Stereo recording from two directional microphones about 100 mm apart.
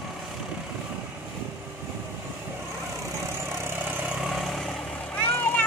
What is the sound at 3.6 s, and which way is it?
Vehicle, 20° right (ahead or behind).